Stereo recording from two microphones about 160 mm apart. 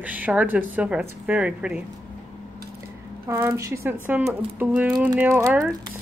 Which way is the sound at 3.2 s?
15° right (ahead or behind).